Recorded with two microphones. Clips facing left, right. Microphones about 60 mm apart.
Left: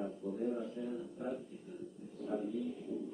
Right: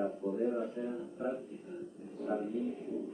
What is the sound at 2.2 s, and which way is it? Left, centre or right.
Speech, right.